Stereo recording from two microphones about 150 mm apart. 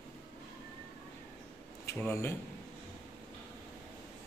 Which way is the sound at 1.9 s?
20° left (ahead or behind).